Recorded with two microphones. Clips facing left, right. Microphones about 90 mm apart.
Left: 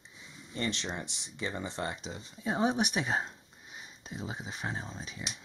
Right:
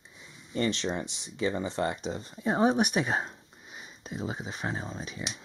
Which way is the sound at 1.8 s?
45° right (ahead or behind).